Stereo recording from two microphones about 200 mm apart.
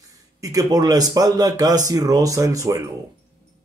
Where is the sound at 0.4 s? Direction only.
15° right (ahead or behind).